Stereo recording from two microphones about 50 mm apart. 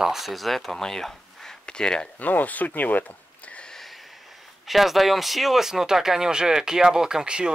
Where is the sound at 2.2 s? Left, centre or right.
Left.